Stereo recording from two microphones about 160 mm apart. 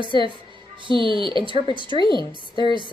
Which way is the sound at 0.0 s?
30° right (ahead or behind).